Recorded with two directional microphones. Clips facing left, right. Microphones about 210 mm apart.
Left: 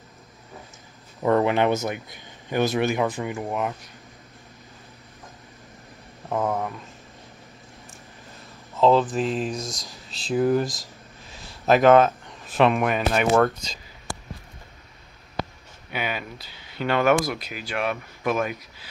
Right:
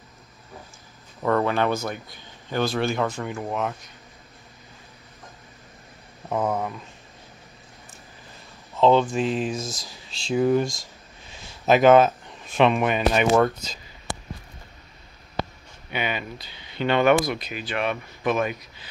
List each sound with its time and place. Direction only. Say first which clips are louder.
1.2 s speech: left 2 dB; 20° left (ahead or behind)
6.2 s speech: even; centre (ahead or behind)
8.7 s speech: even; centre (ahead or behind)
15.4 s a sound: right 1 dB; 25° right (ahead or behind)
15.9 s speech: right 1 dB; 5° left (ahead or behind)